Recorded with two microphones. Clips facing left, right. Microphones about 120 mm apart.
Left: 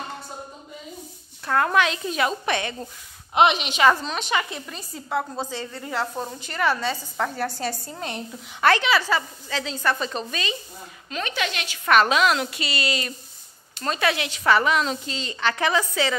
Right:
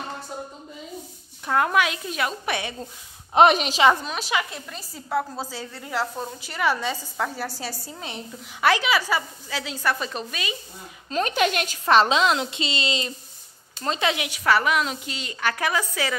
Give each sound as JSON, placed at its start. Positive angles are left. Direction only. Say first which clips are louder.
{"t": 1.4, "sound": "a woman's voice", "louder": "left 1 dB", "side_deg": -10}
{"t": 3.3, "sound": "a woman's voice", "louder": "right 3 dB", "side_deg": -40}
{"t": 3.8, "sound": "a woman's voice", "louder": "left 1 dB", "side_deg": -15}
{"t": 11.1, "sound": "a woman's voice", "louder": "right 6 dB", "side_deg": -40}
{"t": 11.8, "sound": "a woman's voice", "louder": "even", "side_deg": -25}